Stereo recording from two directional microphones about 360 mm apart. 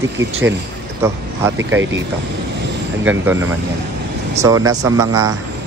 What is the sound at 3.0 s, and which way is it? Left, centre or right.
Speech, centre.